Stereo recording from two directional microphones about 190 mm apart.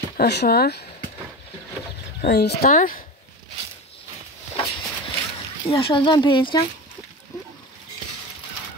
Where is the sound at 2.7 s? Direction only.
45° left (ahead or behind).